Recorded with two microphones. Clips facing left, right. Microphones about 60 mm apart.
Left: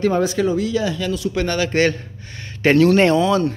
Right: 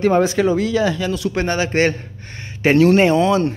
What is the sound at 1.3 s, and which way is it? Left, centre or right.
Speech, right.